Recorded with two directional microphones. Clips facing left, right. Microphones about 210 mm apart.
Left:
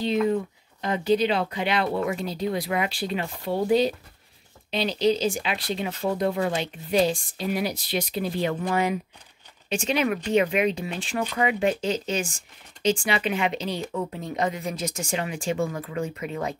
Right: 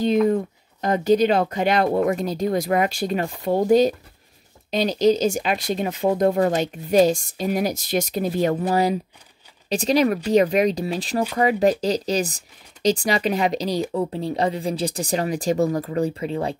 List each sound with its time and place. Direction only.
0.3 s speech: 45° right (ahead or behind)